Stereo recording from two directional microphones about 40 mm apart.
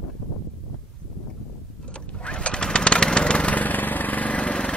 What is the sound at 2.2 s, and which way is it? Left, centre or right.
Lawn mower, left.